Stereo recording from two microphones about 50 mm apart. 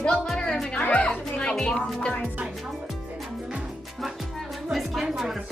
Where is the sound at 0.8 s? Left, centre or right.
Left.